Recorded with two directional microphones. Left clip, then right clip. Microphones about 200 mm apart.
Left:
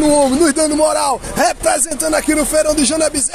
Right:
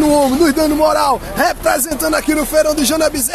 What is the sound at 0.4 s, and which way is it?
Speech, 20° left (ahead or behind).